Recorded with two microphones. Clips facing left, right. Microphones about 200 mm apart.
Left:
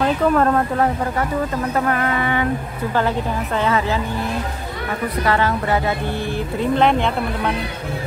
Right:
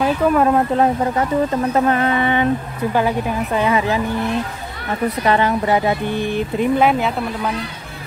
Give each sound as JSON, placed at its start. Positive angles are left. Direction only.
{"t": 0.0, "sound": "speech", "side_deg": -10}
{"t": 1.7, "sound": "speech", "side_deg": -25}
{"t": 2.9, "sound": "speech", "side_deg": -15}
{"t": 5.2, "sound": "speech", "side_deg": -20}